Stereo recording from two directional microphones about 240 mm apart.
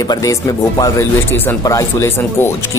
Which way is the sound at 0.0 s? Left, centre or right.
Centre.